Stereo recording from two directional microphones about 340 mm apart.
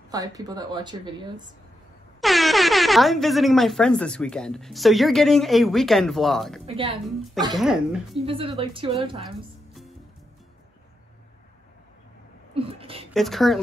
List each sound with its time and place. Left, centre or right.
0.1 s speech: centre
2.2 s speech: centre
6.6 s speech: centre
7.5 s speech: centre
8.3 s speech: centre
12.5 s a sound: centre
13.1 s speech: centre